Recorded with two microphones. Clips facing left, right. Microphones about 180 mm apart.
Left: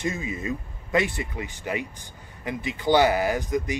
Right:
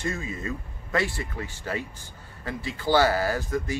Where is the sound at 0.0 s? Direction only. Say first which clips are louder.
Left 2 dB; 15° left (ahead or behind).